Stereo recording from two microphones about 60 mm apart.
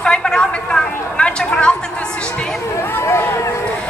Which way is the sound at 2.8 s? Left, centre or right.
Left.